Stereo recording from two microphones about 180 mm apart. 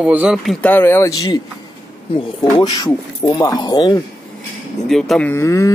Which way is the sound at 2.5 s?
20° left (ahead or behind).